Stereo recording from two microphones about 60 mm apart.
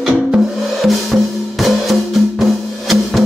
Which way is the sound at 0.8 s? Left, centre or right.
Centre.